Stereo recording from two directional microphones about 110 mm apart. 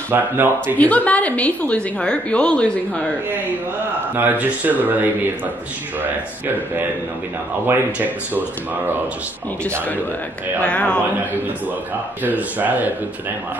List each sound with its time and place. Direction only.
0.1 s speech: 15° right (ahead or behind)
0.7 s a woman's voice: 15° left (ahead or behind)
4.2 s speech: 15° right (ahead or behind)
7.6 s speech: 15° right (ahead or behind)
10.6 s a woman's voice: 10° left (ahead or behind)
12.2 s speech: 15° right (ahead or behind)